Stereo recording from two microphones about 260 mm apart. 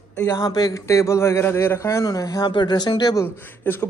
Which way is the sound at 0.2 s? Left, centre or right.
Centre.